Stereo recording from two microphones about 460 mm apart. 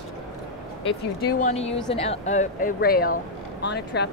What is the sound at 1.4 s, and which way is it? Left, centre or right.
Speech, centre.